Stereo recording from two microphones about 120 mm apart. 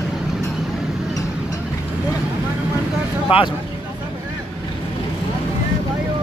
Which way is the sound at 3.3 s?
50° left (ahead or behind).